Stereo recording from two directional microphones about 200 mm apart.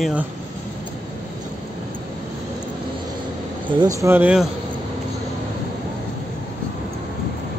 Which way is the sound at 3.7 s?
15° right (ahead or behind).